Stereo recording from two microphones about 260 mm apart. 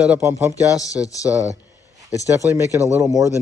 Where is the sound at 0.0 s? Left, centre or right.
Centre.